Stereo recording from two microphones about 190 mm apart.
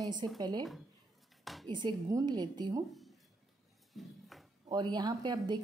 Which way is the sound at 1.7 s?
25° right (ahead or behind).